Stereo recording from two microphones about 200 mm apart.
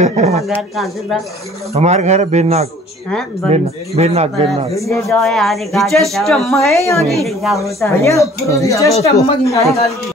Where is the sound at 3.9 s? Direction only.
30° right (ahead or behind).